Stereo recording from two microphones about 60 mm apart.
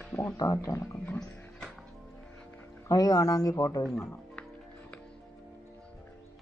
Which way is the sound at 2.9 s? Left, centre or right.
Left.